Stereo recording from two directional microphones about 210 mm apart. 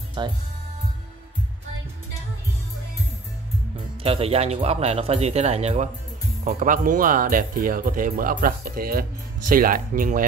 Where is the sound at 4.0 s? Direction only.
25° right (ahead or behind).